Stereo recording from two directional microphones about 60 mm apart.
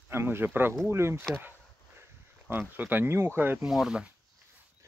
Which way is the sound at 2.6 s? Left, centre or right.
Right.